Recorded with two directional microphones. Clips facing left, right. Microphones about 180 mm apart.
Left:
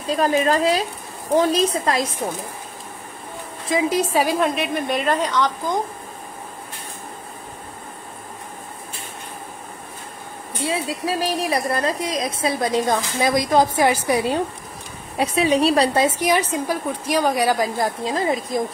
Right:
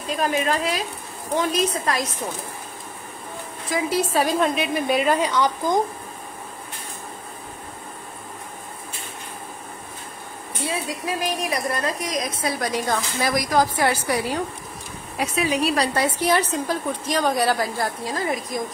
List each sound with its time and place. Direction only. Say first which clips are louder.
0.1 s a woman's voice: left 4 dB; 40° left (ahead or behind)
3.7 s a woman's voice: left 3 dB; 15° left (ahead or behind)
4.3 s a woman's voice: left 1 dB; centre (ahead or behind)
10.6 s a woman's voice: left 4 dB; 30° left (ahead or behind)